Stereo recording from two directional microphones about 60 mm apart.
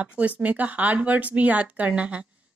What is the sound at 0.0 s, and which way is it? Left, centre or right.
Speech, right.